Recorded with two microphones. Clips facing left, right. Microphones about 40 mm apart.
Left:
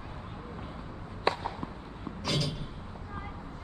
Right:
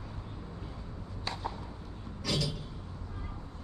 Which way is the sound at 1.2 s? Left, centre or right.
Left.